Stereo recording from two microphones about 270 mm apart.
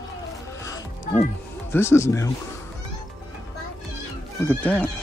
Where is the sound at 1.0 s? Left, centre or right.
Left.